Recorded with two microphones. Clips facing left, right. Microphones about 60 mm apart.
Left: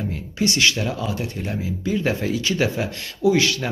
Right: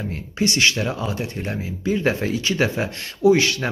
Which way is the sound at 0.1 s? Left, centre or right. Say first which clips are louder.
Right 3 dB; right.